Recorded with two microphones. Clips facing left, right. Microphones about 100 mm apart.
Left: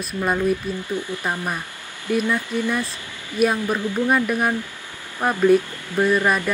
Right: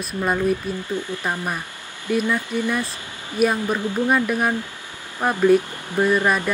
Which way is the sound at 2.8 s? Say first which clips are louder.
Even; 30° right (ahead or behind).